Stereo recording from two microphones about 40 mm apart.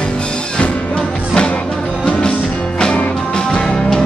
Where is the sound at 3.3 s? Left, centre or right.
Centre.